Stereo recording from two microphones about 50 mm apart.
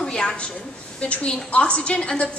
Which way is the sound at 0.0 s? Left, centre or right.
Centre.